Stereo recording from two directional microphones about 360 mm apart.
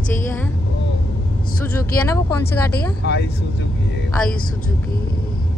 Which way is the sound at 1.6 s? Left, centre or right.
Centre.